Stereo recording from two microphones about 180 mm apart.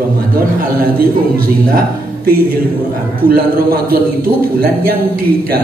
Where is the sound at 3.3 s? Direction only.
55° right (ahead or behind).